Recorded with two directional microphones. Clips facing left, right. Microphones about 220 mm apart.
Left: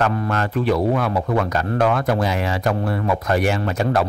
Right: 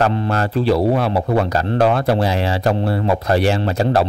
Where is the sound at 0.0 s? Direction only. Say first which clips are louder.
Right 3 dB; 30° right (ahead or behind).